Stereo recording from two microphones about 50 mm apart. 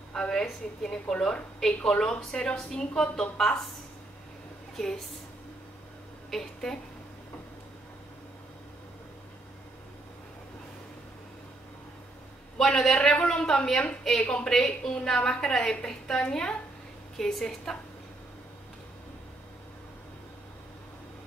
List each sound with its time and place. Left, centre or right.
0.1 s a woman's voice: centre
1.7 s a woman's voice: left
6.3 s a woman's voice: centre
12.5 s a woman's voice: centre
17.2 s a woman's voice: centre